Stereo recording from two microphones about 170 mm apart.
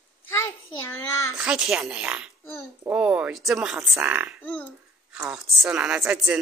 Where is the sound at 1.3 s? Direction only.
5° right (ahead or behind).